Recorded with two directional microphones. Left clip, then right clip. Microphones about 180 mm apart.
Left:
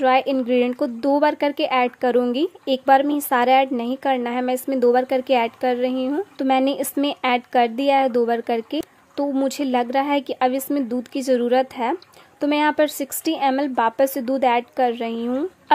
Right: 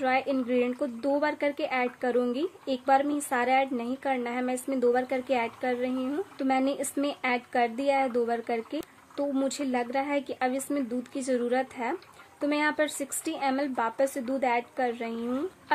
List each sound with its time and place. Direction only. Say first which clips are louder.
0.0 s speech: left 9 dB; 30° left (ahead or behind)